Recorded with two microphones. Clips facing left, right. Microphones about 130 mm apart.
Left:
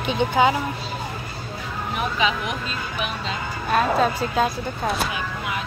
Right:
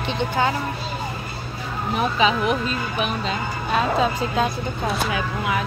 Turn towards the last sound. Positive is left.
turn(degrees=0)  # may be behind; listen again after turning